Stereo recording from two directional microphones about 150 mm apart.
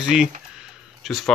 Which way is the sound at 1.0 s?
Centre (ahead or behind).